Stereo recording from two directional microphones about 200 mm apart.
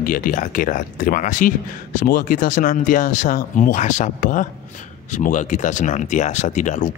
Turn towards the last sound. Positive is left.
turn(degrees=40)  # may be behind; listen again after turning